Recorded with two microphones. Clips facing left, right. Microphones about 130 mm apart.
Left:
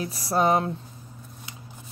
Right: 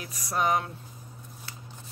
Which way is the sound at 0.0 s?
30° left (ahead or behind).